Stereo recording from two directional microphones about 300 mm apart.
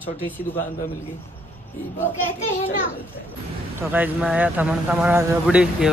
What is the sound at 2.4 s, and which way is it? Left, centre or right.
Speech, left.